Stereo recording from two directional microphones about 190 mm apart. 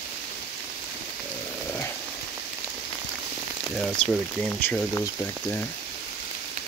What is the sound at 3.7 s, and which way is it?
Speech, centre (ahead or behind).